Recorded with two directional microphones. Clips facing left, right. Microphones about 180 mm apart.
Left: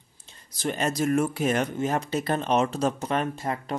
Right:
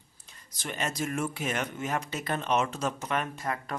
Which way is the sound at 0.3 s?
35° left (ahead or behind).